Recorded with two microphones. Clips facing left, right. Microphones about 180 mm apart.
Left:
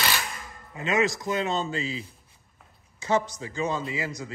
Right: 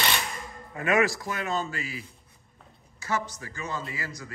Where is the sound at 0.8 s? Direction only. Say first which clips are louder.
Right 1 dB; 20° left (ahead or behind).